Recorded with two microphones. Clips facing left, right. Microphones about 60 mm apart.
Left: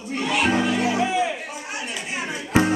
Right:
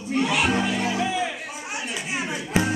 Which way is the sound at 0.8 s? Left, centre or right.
Left.